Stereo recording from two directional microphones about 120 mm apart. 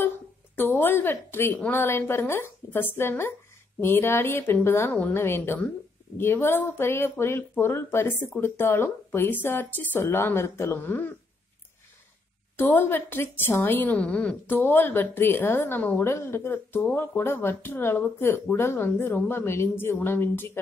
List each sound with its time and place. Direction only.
0.6 s a woman's voice: 15° left (ahead or behind)
12.5 s a woman's voice: 15° left (ahead or behind)